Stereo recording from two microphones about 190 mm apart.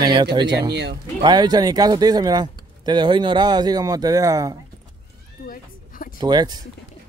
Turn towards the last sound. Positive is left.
turn(degrees=-20)  # may be behind; listen again after turning